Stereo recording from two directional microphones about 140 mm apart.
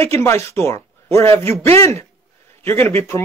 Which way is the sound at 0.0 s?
20° left (ahead or behind).